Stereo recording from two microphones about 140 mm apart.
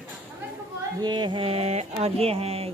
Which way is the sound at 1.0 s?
30° right (ahead or behind).